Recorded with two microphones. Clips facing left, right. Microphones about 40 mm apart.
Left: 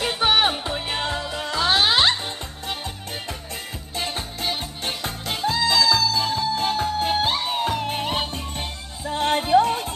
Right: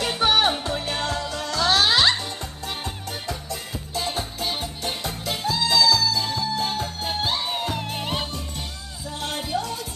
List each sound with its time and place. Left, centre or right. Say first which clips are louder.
0.0 s music: left 1 dB; centre
3.9 s music: right 1 dB; left